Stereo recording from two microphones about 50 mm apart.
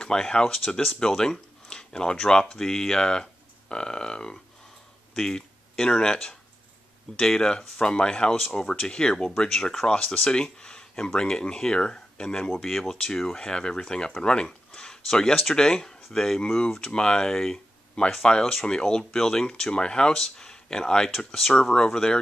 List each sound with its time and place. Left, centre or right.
0.0 s speech: centre